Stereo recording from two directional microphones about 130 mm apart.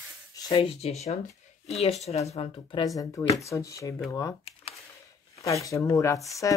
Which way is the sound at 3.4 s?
25° left (ahead or behind).